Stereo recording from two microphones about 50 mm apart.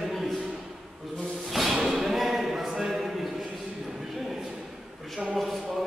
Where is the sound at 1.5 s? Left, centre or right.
Centre.